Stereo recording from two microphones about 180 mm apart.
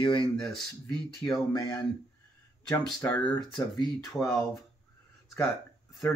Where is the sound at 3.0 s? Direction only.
10° left (ahead or behind).